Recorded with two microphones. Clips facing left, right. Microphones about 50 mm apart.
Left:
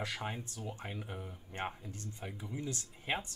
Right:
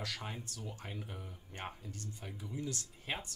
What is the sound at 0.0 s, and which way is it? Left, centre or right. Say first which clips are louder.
Speech: left 3 dB; left.